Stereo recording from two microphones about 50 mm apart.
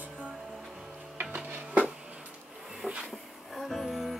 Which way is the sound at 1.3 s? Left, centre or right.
Right.